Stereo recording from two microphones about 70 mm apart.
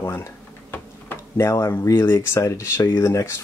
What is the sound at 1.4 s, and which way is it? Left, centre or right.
Speech, left.